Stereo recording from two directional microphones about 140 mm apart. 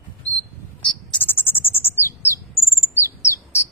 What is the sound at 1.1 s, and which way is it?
Bird, 15° left (ahead or behind).